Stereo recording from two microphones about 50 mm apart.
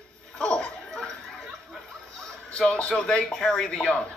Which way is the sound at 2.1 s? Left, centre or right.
Centre.